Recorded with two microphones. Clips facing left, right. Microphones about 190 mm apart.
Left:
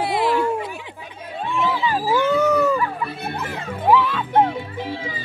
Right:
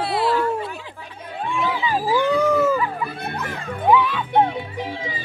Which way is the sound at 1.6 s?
Centre (ahead or behind).